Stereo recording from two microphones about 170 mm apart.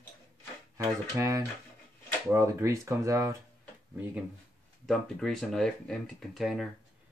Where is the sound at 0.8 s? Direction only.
15° right (ahead or behind).